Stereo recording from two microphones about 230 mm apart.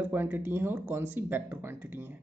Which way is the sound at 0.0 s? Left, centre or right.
Centre.